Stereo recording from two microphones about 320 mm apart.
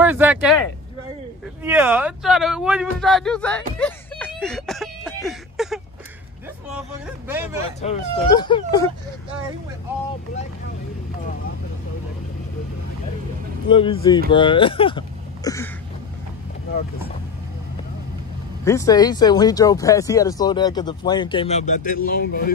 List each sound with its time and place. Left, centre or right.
0.0 s speech: centre
1.6 s speech: centre
7.8 s speech: centre
13.7 s speech: centre
18.6 s speech: centre; by 22.5 s left